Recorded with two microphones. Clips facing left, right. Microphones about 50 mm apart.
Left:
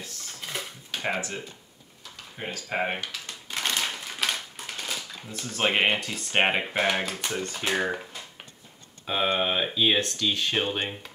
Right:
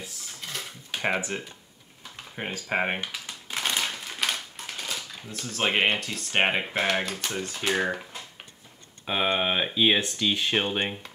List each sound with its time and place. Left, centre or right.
1.0 s speech: right
2.4 s shuffling cards: centre
3.8 s speech: centre
9.0 s speech: centre